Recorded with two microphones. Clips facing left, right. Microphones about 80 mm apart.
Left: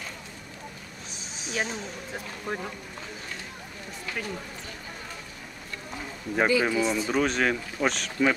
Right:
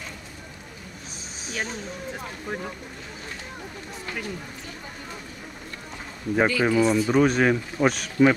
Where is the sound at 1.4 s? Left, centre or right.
Centre.